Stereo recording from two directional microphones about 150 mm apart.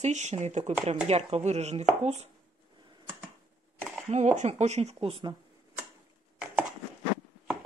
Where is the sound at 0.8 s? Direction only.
45° right (ahead or behind).